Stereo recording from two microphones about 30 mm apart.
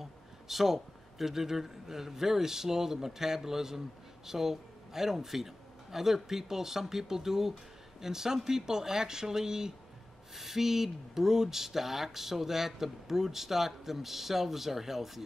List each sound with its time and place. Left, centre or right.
0.0 s speech: centre
10.3 s speech: centre